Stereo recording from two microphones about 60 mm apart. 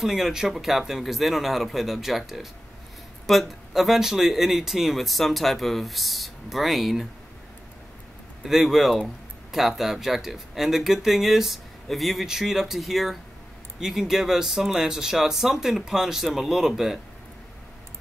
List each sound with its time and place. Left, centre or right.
0.0 s speech: centre
8.5 s speech: centre